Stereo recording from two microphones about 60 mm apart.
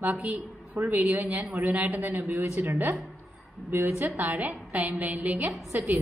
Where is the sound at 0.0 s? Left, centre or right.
Right.